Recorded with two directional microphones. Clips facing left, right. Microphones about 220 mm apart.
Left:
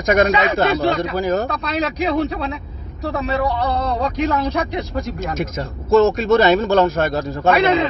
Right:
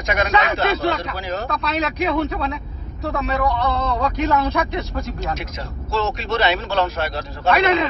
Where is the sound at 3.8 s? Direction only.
30° left (ahead or behind).